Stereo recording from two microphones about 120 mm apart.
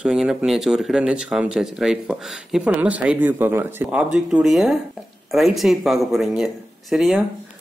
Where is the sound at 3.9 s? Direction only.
5° right (ahead or behind).